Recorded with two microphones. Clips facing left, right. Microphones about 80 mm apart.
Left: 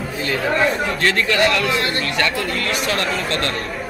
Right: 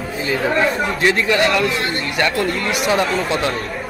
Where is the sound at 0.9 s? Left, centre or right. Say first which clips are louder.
Right 2 dB; centre.